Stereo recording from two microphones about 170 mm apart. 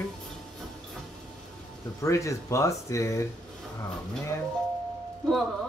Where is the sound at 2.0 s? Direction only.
20° left (ahead or behind).